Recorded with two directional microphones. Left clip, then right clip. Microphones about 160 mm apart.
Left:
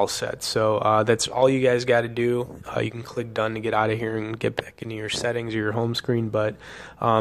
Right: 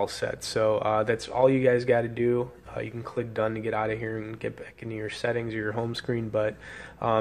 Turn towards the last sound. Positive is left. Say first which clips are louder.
# left 4 dB
turn(degrees=30)  # may be behind; listen again after turning